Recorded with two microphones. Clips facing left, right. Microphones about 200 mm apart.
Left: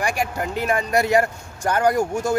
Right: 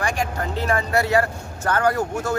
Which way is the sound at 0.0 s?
10° left (ahead or behind).